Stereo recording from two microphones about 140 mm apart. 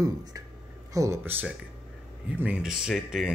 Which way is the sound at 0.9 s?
20° right (ahead or behind).